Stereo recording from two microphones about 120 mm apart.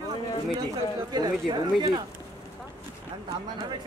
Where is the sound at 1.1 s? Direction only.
35° right (ahead or behind).